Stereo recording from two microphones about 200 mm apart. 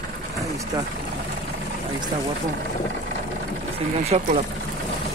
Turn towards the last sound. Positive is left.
turn(degrees=-30)  # may be behind; listen again after turning